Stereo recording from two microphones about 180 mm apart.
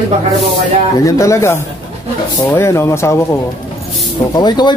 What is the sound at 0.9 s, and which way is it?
Speech, 20° left (ahead or behind).